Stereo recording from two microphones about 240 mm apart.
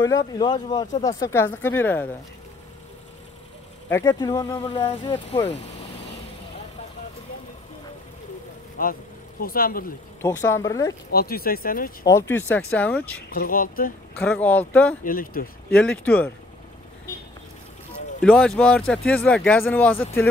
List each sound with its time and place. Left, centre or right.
0.0 s speech: centre
3.9 s speech: centre
8.8 s speech: left
10.2 s speech: centre
11.1 s speech: left
12.1 s speech: centre
13.3 s speech: left
14.2 s speech: centre
15.0 s speech: left
15.7 s speech: centre
18.2 s speech: centre